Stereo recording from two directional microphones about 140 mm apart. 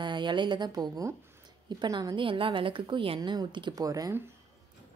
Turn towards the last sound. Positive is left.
turn(degrees=-25)  # may be behind; listen again after turning